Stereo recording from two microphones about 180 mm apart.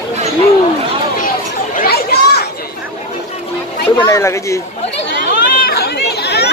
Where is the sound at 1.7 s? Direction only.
55° left (ahead or behind).